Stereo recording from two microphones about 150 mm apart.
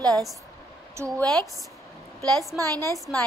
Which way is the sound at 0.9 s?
20° right (ahead or behind).